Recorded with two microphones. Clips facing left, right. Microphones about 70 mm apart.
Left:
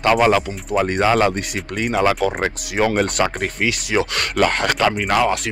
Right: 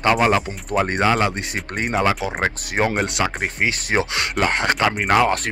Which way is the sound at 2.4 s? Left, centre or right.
Right.